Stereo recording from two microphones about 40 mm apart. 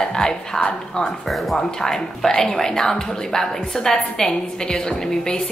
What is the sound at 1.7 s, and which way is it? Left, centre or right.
A woman's voice, centre.